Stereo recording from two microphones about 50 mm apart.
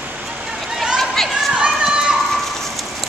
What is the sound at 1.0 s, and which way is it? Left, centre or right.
Run, centre.